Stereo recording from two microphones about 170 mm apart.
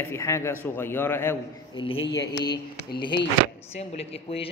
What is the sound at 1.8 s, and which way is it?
Speech, 30° left (ahead or behind).